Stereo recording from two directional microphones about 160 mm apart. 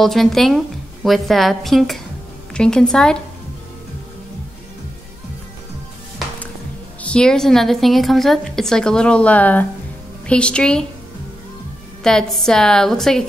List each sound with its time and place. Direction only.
0.0 s a woman's voice: centre (ahead or behind)
7.0 s a woman's voice: 5° left (ahead or behind)
12.0 s a woman's voice: 5° left (ahead or behind)